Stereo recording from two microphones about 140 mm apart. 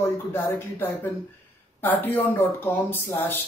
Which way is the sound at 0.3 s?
15° left (ahead or behind).